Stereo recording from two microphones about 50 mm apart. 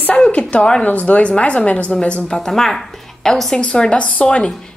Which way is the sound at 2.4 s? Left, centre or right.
Centre.